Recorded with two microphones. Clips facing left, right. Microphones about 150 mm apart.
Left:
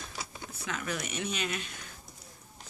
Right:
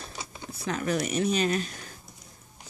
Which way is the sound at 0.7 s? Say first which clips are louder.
Right 8 dB; 35° right (ahead or behind).